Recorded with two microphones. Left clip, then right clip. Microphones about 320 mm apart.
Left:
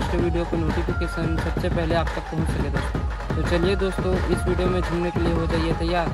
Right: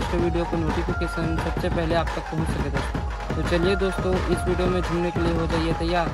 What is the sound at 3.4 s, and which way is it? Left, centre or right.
Speech, centre.